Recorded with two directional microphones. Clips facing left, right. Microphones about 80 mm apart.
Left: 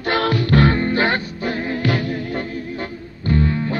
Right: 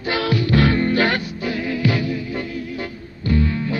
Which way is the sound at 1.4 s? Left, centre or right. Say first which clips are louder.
Even; left.